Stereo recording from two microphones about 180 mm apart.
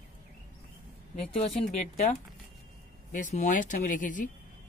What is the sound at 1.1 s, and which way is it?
Speech, 35° left (ahead or behind).